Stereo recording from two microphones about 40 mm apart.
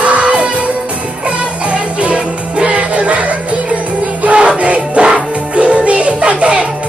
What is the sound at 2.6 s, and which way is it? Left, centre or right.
Music, right.